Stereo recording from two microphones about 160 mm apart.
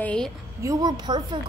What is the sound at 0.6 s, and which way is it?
Speech, 20° right (ahead or behind).